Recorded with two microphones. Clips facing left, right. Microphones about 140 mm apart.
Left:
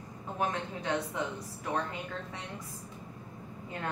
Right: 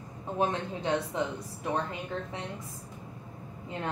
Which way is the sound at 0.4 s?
25° right (ahead or behind).